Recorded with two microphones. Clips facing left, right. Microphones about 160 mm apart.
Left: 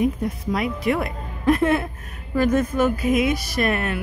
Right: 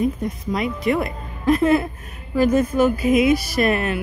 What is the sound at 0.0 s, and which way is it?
Speech, 5° left (ahead or behind).